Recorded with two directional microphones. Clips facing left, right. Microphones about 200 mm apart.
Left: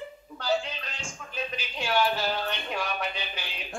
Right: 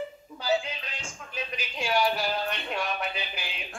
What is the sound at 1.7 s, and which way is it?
Speech, 10° right (ahead or behind).